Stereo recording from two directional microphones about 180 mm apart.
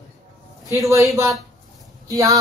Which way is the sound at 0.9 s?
15° right (ahead or behind).